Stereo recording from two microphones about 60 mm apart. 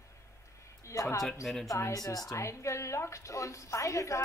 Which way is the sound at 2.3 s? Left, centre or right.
Left.